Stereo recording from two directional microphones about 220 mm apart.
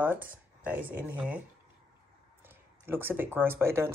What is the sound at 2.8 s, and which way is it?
Speech, 10° right (ahead or behind).